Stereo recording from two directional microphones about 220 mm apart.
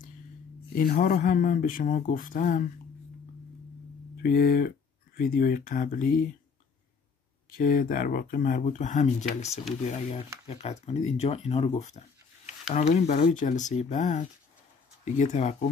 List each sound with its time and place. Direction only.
0.7 s speech: 40° left (ahead or behind)
4.2 s speech: 40° left (ahead or behind)
7.5 s speech: 40° left (ahead or behind)